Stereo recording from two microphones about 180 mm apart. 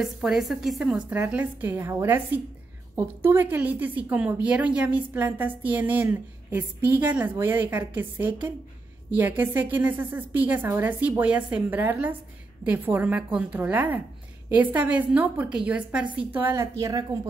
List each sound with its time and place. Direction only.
0.0 s a woman's voice: centre (ahead or behind); by 17.0 s 20° right (ahead or behind)